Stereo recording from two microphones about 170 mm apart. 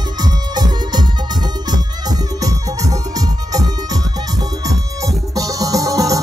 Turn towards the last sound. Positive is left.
turn(degrees=-20)  # may be behind; listen again after turning